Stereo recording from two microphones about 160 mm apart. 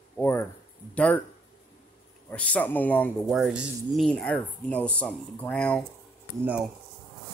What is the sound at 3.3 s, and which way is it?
Speech, 5° right (ahead or behind).